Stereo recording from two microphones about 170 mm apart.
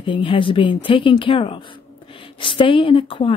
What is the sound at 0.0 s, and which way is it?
A woman's voice, 30° left (ahead or behind).